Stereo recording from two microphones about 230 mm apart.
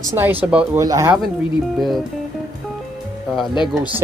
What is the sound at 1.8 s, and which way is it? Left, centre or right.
Speech, centre.